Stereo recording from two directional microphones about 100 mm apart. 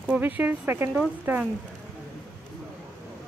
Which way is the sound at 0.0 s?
15° right (ahead or behind).